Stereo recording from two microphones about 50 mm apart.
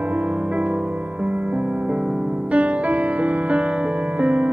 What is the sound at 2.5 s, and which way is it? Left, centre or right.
Music, right.